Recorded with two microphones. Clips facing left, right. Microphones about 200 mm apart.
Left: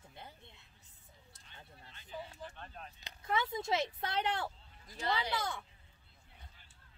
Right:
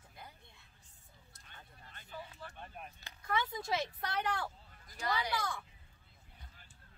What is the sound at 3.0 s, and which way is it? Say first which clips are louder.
Speech: left 1 dB; 25° left (ahead or behind).